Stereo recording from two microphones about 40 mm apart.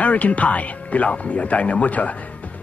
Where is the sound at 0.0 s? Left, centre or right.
Left.